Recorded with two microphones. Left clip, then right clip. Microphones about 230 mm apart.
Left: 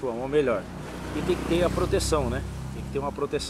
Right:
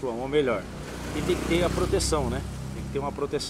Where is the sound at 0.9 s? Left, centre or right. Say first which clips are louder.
Even; right.